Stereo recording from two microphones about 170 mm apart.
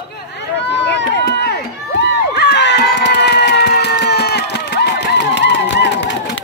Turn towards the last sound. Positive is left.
turn(degrees=90)